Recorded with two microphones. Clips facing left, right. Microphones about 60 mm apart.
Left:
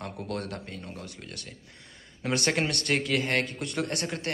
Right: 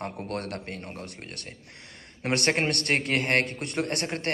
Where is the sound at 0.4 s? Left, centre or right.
Right.